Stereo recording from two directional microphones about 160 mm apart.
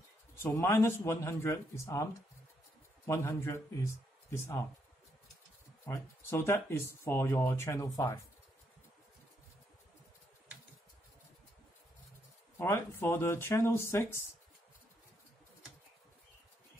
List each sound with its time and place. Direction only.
0.4 s speech: 15° left (ahead or behind)
3.1 s speech: 15° left (ahead or behind)
5.9 s speech: 15° left (ahead or behind)
12.5 s speech: 15° left (ahead or behind)